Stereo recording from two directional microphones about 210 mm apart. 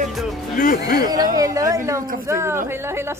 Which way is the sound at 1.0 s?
20° right (ahead or behind).